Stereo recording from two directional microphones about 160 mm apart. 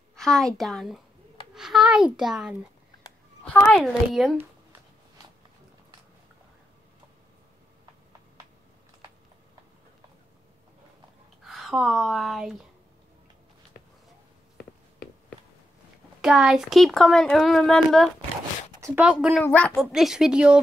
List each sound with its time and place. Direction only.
0.1 s a woman's voice: centre (ahead or behind)
3.7 s speech: centre (ahead or behind)
11.4 s speech: centre (ahead or behind)
16.2 s speech: centre (ahead or behind)
18.8 s a sound: 20° right (ahead or behind)
19.0 s speech: 5° right (ahead or behind)
19.4 s a woman's voice: 10° left (ahead or behind)
19.8 s speech: centre (ahead or behind)